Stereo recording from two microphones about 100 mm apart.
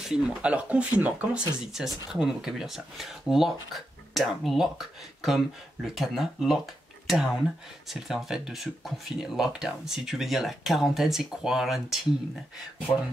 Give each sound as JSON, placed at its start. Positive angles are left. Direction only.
{"t": 0.0, "sound": "speech", "side_deg": -10}